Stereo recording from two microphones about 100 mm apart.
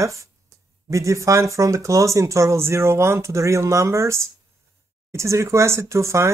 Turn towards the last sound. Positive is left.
turn(degrees=-30)  # may be behind; listen again after turning